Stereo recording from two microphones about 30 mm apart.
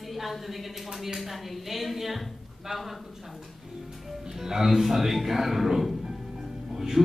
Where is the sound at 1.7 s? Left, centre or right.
Centre.